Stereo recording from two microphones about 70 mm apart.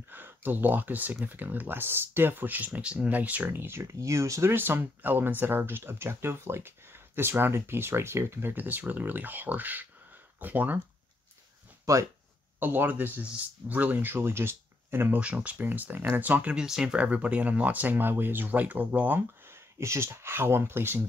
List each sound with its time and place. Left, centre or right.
0.1 s speech: right
3.8 s speech: right
4.5 s speech: right
11.8 s speech: right
12.5 s speech: right
15.1 s speech: centre
16.5 s speech: centre
19.1 s speech: right